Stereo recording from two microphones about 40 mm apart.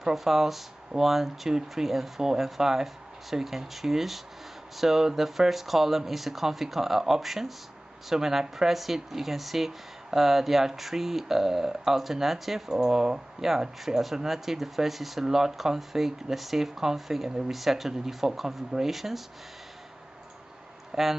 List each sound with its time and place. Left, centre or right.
0.0 s speech: centre
20.9 s speech: centre